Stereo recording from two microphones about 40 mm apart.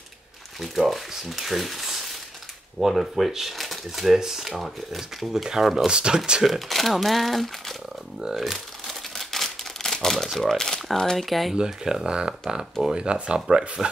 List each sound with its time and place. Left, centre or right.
0.7 s speech: centre
5.9 s speech: right
6.4 s speech: centre
8.8 s crumpling: centre
9.9 s speech: centre
11.2 s speech: centre
11.5 s speech: centre